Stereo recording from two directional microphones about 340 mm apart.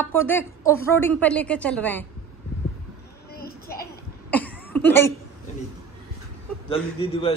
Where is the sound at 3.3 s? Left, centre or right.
Left.